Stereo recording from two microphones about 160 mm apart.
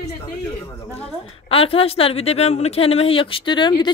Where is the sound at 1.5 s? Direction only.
35° left (ahead or behind).